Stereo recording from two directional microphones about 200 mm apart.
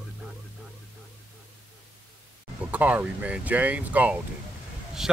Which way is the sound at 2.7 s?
5° right (ahead or behind).